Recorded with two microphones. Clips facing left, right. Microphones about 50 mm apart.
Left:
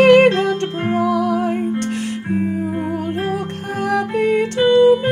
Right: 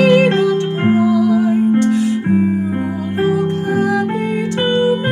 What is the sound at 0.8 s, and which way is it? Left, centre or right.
Music, right.